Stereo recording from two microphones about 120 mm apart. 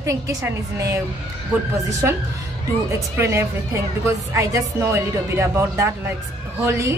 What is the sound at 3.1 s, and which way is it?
A woman's voice, 20° right (ahead or behind).